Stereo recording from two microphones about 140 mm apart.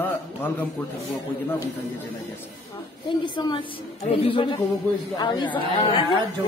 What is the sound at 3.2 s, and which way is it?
A man's voice, 30° left (ahead or behind).